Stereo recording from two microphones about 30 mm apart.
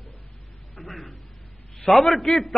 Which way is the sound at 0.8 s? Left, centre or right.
Centre.